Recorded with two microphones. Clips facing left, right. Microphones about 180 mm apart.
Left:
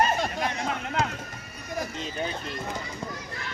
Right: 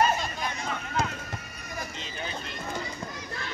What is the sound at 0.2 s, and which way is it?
Chatter, 70° left (ahead or behind).